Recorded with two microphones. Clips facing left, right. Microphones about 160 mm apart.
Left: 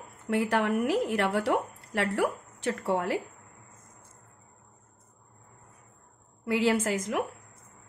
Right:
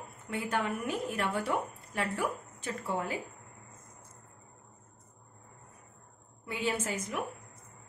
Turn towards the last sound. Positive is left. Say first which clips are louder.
# left 7 dB
turn(degrees=85)